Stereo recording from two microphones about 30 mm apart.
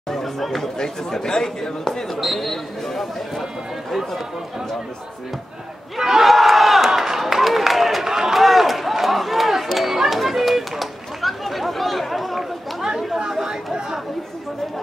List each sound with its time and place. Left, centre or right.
0.1 s chatter: centre
0.7 s speech: left
2.1 s speech: centre
5.9 s battle cry: centre
6.2 s crowd: centre
7.0 s run: centre
10.0 s a sound: centre
12.4 s chatter: centre
13.3 s chatter: centre